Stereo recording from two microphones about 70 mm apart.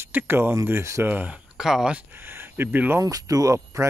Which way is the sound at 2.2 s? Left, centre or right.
Right.